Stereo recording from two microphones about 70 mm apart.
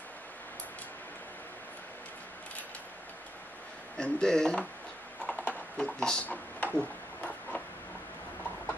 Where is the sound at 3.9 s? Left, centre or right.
Centre.